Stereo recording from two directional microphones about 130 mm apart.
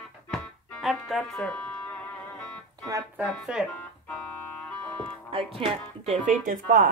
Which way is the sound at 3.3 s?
Centre (ahead or behind).